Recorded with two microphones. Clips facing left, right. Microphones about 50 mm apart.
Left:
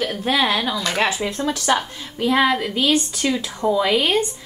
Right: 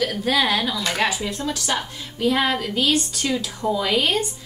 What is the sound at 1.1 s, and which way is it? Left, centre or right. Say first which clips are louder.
Speech: left 3 dB; left.